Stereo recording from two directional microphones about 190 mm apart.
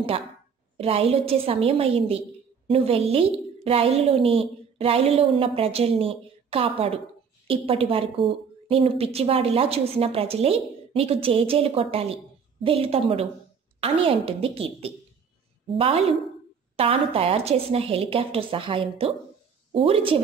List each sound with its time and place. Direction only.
0.7 s a woman's voice: 30° right (ahead or behind)
16.7 s a woman's voice: 30° right (ahead or behind)